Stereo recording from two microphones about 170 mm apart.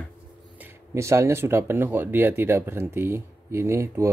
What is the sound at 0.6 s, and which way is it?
Speech, 15° right (ahead or behind).